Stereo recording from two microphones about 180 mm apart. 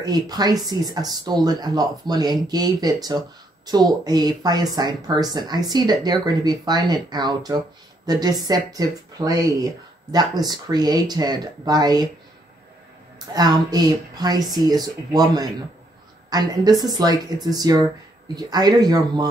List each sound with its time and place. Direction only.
0.0 s speech: 20° right (ahead or behind)
13.3 s speech: 20° right (ahead or behind)